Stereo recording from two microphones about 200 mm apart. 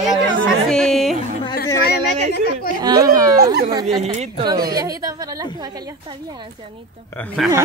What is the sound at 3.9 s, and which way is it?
Speech, 30° right (ahead or behind).